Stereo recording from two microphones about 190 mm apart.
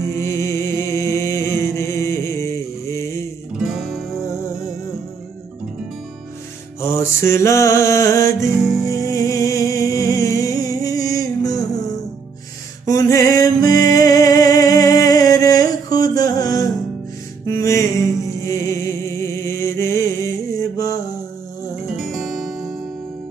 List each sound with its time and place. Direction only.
0.0 s music: 15° left (ahead or behind)
3.5 s music: centre (ahead or behind)
6.8 s music: 15° left (ahead or behind)
12.8 s music: 15° left (ahead or behind)
21.9 s music: centre (ahead or behind)